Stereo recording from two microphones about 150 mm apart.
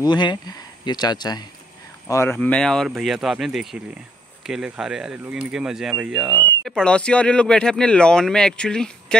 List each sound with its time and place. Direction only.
0.0 s speech: 30° left (ahead or behind)
2.0 s speech: 15° left (ahead or behind)